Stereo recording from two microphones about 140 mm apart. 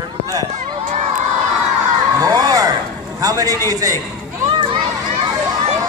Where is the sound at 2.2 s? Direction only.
25° right (ahead or behind).